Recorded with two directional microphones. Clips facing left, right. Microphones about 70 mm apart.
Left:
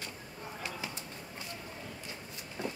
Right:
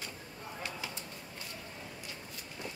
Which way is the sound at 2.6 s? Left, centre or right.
Left.